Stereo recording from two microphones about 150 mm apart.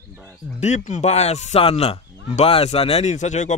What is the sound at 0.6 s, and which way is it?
Speech, 50° left (ahead or behind).